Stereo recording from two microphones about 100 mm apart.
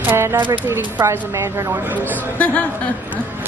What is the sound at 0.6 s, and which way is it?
Speech, 25° right (ahead or behind).